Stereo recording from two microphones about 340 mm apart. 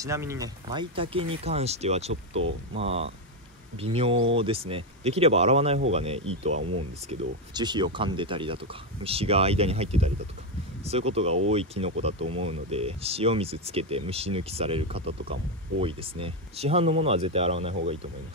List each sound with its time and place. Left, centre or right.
0.0 s speech: centre
6.6 s speech: right
7.1 s speech: centre